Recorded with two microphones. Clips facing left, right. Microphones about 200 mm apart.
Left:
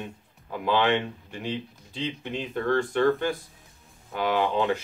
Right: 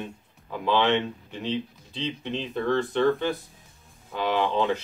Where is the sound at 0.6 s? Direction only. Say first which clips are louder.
Right 1 dB; 10° left (ahead or behind).